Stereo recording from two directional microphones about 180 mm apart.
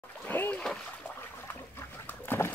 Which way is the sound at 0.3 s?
10° left (ahead or behind).